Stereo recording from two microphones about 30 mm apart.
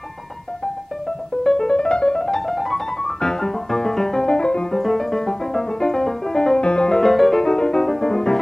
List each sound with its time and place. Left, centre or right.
1.4 s piano: centre
1.8 s piano: left
2.2 s piano: centre
3.0 s music: centre
4.8 s music: centre
6.6 s music: left
7.0 s music: centre
7.4 s music: left